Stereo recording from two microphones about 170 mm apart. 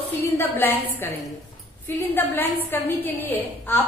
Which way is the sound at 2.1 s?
10° left (ahead or behind).